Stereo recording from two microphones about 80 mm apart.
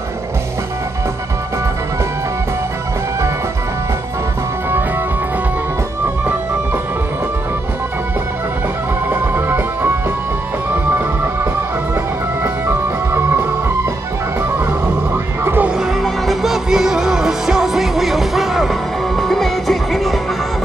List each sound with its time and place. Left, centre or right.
9.1 s music: right
12.6 s music: right
15.4 s music: right
15.8 s music: centre